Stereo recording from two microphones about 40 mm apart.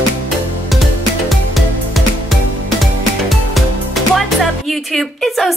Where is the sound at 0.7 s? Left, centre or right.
Centre.